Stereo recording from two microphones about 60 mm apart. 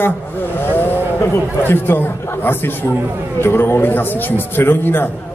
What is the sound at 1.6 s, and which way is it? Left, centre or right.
A man's voice, left.